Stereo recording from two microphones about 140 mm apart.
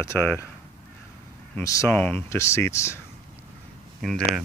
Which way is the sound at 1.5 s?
20° left (ahead or behind).